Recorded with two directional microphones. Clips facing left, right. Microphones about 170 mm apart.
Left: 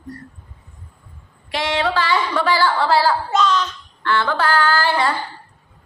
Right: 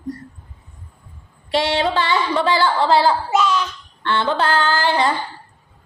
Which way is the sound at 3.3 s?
10° right (ahead or behind).